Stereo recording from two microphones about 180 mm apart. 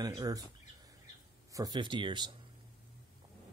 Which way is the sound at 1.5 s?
20° right (ahead or behind).